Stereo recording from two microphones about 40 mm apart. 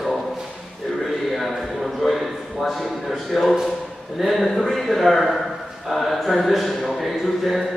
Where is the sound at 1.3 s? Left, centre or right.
Centre.